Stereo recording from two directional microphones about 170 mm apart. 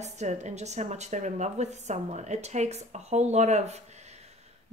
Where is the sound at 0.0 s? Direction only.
40° right (ahead or behind).